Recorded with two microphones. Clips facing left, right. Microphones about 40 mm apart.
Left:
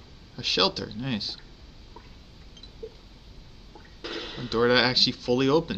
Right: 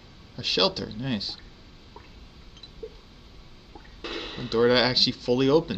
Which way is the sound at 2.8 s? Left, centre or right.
Right.